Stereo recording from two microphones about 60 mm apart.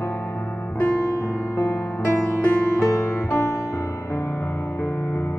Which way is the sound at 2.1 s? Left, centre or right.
Left.